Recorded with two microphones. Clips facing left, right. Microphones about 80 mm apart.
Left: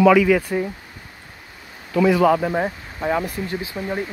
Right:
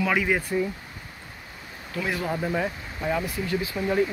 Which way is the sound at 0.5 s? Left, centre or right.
Left.